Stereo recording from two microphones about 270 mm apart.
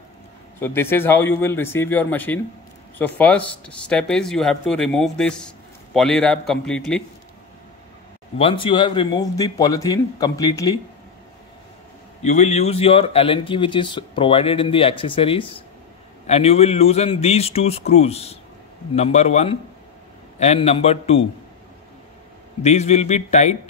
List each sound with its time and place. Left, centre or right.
0.6 s a man's voice: centre
8.4 s a man's voice: centre
12.2 s speech: left
22.6 s speech: left